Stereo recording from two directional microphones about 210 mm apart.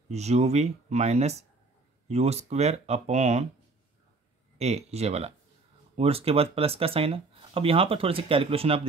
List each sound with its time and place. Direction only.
0.1 s speech: 30° right (ahead or behind)
4.6 s speech: 30° right (ahead or behind)